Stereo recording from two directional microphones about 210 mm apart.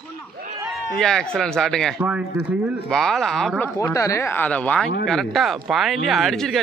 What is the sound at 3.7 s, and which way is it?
Speech, 15° left (ahead or behind).